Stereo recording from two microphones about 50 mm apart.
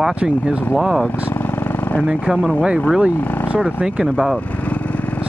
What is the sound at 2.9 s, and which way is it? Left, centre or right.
Speech, right.